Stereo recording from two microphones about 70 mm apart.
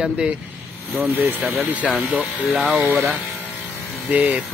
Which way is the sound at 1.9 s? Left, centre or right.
Centre.